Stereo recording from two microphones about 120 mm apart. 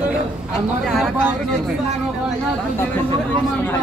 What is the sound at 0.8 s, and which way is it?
Speech, centre (ahead or behind).